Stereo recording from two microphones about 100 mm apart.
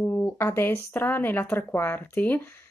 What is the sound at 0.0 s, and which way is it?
Speech, 25° left (ahead or behind).